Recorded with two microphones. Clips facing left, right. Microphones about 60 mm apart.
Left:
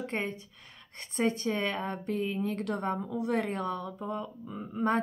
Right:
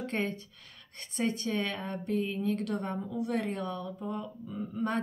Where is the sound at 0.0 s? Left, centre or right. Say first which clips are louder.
Right 1 dB; centre.